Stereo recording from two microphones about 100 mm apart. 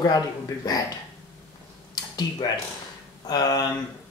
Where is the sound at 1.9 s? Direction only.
40° left (ahead or behind).